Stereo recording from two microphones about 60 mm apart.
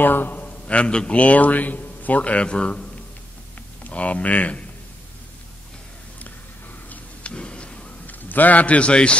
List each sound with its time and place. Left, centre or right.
0.0 s a man's voice: left
6.9 s a sound: centre
8.2 s a man's voice: left